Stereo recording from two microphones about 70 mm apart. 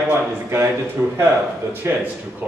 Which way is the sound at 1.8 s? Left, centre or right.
Right.